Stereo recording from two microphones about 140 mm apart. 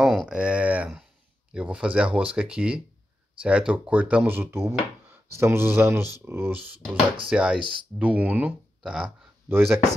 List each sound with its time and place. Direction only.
0.0 s speech: centre (ahead or behind); by 9.8 s 15° right (ahead or behind)